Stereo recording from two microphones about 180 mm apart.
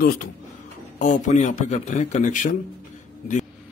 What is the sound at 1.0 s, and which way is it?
A man's voice, 40° left (ahead or behind).